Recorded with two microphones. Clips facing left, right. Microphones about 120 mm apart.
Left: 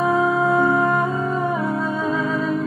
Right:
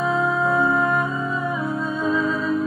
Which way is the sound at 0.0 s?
55° left (ahead or behind).